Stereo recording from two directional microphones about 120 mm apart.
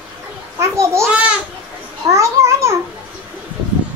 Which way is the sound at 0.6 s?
25° right (ahead or behind).